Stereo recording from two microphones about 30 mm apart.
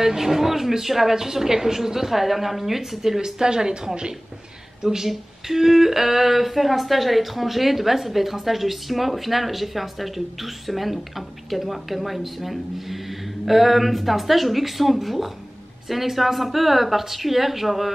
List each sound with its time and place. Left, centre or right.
0.0 s a woman's voice: centre
3.2 s a woman's voice: right
4.9 s speech: centre